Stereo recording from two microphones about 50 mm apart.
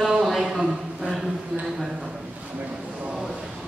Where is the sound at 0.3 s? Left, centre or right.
Centre.